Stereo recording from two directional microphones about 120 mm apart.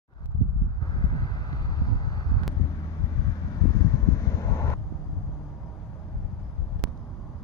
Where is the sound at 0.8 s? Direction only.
35° left (ahead or behind).